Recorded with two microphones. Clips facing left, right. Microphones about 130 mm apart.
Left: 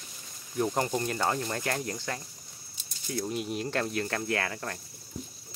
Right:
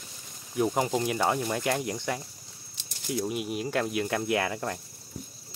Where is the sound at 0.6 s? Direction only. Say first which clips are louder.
Right 2 dB; 10° right (ahead or behind).